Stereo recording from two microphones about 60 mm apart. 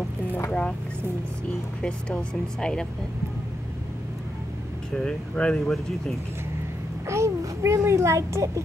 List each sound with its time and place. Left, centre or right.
0.5 s vehicle: centre
1.8 s speech: centre
4.9 s speech: centre
7.1 s a child's voice: right